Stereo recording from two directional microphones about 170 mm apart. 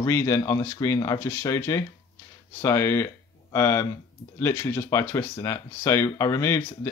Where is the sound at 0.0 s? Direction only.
15° left (ahead or behind).